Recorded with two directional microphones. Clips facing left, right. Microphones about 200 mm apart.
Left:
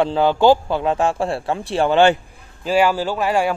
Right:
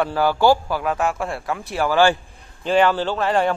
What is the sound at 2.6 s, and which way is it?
Speech, 10° left (ahead or behind).